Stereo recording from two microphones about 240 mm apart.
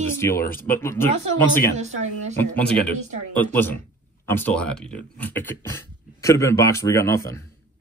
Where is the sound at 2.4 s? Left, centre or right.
Centre.